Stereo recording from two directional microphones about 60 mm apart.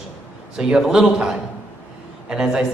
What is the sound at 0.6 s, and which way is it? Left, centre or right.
A woman's voice, centre.